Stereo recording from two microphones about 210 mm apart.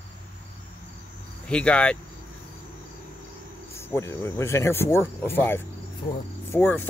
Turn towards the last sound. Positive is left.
turn(degrees=10)  # may be behind; listen again after turning